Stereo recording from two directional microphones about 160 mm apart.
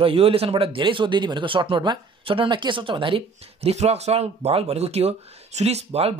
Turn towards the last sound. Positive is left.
turn(degrees=-40)  # may be behind; listen again after turning